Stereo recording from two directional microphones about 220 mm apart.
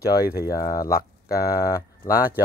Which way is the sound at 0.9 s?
45° left (ahead or behind).